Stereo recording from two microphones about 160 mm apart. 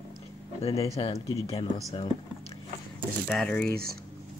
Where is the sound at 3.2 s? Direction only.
5° left (ahead or behind).